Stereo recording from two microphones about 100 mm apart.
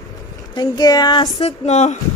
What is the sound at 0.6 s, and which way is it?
Speech, 40° left (ahead or behind).